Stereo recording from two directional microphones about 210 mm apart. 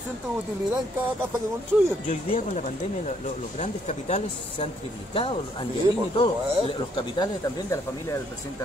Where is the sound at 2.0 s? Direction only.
35° left (ahead or behind); by 8.2 s 15° left (ahead or behind).